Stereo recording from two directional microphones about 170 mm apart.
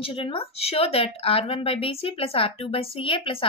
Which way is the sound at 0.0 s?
30° left (ahead or behind).